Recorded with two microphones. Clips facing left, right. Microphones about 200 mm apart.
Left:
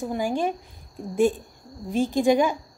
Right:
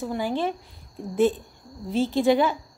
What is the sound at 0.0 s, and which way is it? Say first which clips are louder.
A woman's voice: left 1 dB; 15° left (ahead or behind).